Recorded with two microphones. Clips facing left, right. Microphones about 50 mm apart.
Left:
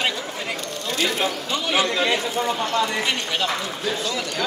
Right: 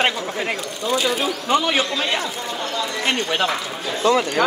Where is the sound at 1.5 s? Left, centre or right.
Right.